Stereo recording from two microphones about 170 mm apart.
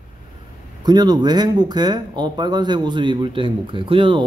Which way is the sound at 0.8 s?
25° right (ahead or behind).